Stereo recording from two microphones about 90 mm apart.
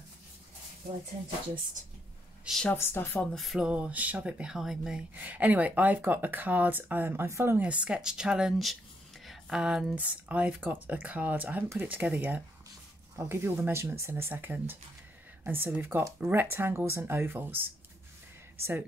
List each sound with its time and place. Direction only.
2.7 s speech: 25° left (ahead or behind)
3.3 s a sound: centre (ahead or behind)
3.6 s speech: 15° right (ahead or behind)
5.1 s speech: 15° right (ahead or behind)
7.6 s speech: 15° right (ahead or behind)
13.1 s speech: 30° right (ahead or behind)